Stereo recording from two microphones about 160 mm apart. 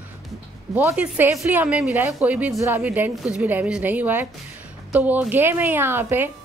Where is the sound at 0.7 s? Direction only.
10° right (ahead or behind).